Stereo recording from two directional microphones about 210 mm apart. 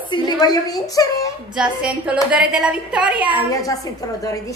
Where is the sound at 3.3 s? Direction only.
15° left (ahead or behind).